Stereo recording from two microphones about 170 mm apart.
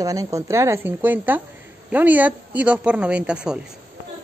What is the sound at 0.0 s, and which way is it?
A woman's voice, 20° right (ahead or behind).